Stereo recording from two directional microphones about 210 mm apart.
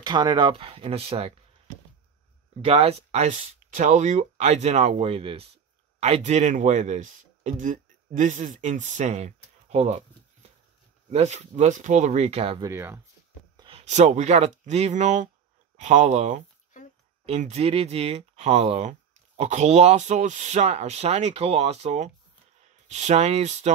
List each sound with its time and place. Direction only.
0.0 s speech: 20° right (ahead or behind)
2.6 s speech: 30° right (ahead or behind)
11.1 s speech: 30° right (ahead or behind)
12.6 s speech: 10° right (ahead or behind)
13.6 s speech: 25° right (ahead or behind)